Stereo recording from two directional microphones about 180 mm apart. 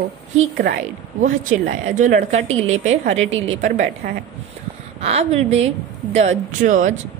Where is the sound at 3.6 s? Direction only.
40° right (ahead or behind).